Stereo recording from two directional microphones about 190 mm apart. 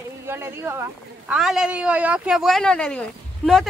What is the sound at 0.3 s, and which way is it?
Speech, 10° right (ahead or behind).